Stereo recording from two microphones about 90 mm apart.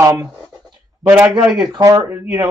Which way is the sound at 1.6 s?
45° right (ahead or behind).